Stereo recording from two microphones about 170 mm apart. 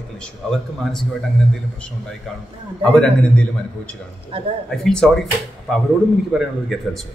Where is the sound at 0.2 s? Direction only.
5° left (ahead or behind).